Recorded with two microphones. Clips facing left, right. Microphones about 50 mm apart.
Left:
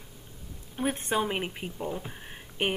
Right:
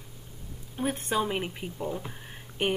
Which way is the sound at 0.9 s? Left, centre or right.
Centre.